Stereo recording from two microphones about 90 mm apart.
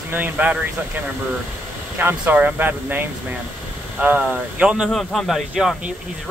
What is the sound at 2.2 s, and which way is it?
Speech, 15° right (ahead or behind).